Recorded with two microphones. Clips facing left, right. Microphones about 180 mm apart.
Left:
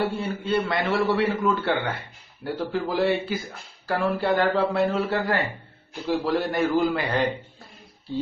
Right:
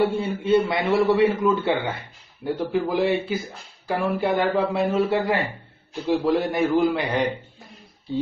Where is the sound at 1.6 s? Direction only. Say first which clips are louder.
Right 2 dB; centre (ahead or behind).